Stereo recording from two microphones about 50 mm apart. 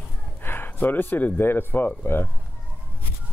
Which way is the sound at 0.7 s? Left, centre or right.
Left.